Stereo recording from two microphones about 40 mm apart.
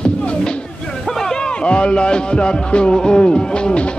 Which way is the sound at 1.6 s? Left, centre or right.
Left.